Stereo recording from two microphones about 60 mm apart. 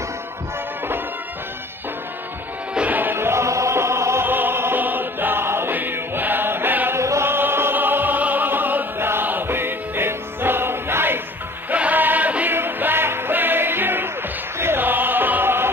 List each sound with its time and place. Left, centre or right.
2.9 s music: right
4.3 s music: right
7.0 s chant: right
7.2 s opera: right
11.7 s choir: right
12.5 s music: right